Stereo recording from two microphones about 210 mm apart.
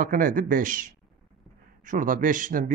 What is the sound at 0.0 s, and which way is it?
Speech, 40° right (ahead or behind).